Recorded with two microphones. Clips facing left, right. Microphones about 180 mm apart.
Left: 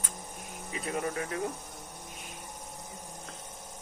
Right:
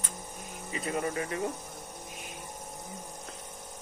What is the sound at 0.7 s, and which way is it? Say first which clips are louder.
Speech: right 1 dB; centre (ahead or behind).